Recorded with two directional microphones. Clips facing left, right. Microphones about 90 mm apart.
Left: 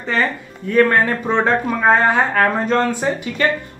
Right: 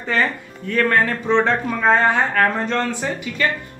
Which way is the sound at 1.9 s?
5° left (ahead or behind).